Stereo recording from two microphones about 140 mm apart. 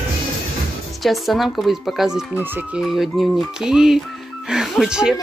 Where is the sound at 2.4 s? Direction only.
15° right (ahead or behind).